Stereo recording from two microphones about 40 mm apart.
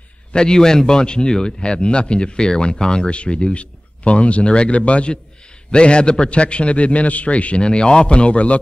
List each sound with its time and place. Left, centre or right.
0.3 s speech: centre
3.1 s speech: left
7.6 s speech: left